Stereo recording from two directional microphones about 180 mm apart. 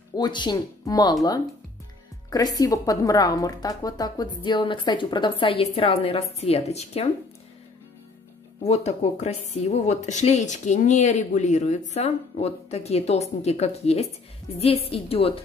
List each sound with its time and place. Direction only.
0.1 s a woman's voice: 25° left (ahead or behind)
2.3 s a woman's voice: 20° left (ahead or behind); by 7.1 s 35° left (ahead or behind)
8.6 s speech: 35° left (ahead or behind)